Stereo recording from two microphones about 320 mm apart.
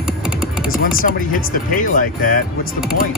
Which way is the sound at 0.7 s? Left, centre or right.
Left.